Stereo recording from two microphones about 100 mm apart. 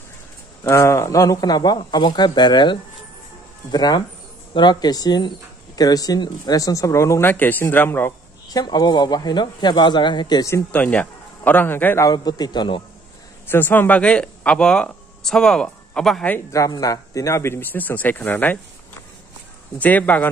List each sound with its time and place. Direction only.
0.7 s speech: 30° left (ahead or behind)
8.5 s speech: 40° left (ahead or behind)
10.7 s a man's voice: 15° left (ahead or behind)
12.1 s speech: 45° left (ahead or behind)
13.5 s speech: 20° left (ahead or behind)
16.5 s speech: 35° left (ahead or behind); by 18.6 s 20° left (ahead or behind)
19.8 s a man's voice: 15° left (ahead or behind)